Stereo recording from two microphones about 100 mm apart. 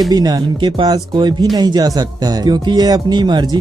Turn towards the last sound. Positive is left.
turn(degrees=-45)  # may be behind; listen again after turning